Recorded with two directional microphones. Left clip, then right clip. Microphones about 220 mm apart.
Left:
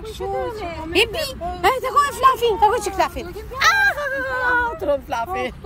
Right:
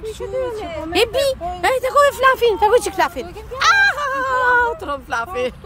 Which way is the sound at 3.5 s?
10° right (ahead or behind).